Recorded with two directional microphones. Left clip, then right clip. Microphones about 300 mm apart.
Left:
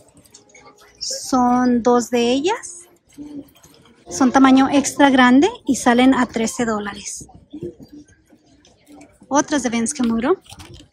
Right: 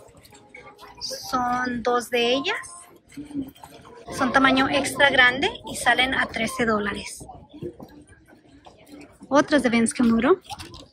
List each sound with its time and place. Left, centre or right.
0.9 s speech: centre
4.1 s a woman's voice: centre
9.3 s speech: centre
10.6 s a sound: centre